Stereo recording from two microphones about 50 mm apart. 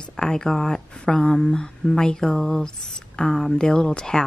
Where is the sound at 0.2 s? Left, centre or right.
Centre.